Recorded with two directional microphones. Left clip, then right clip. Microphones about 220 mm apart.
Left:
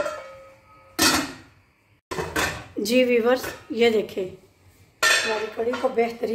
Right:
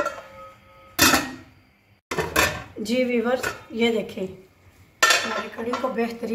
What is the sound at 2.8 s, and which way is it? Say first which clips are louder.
A woman's voice: left 4 dB; 55° left (ahead or behind).